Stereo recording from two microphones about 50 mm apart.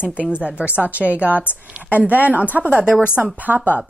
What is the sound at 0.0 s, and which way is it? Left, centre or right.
Speech, right.